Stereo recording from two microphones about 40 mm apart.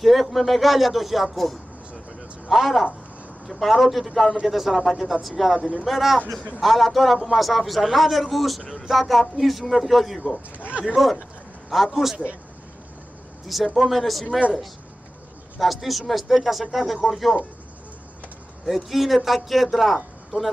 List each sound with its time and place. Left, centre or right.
0.0 s a man's voice: centre
10.7 s speech: right
11.9 s a man's voice: centre
13.7 s a man's voice: centre
15.6 s a man's voice: centre
18.7 s a man's voice: centre